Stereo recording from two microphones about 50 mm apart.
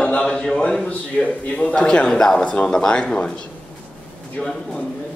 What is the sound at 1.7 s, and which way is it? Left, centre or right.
A man's voice, centre.